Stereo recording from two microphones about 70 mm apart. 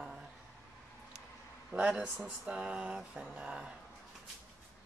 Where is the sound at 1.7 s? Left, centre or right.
Right.